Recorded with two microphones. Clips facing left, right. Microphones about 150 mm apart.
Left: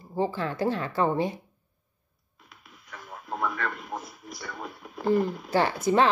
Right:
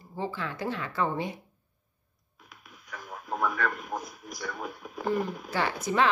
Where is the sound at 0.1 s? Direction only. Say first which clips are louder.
Left 6 dB; 35° left (ahead or behind).